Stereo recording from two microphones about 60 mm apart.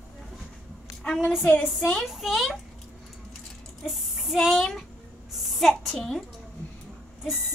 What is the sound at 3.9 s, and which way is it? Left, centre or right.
Speech, centre.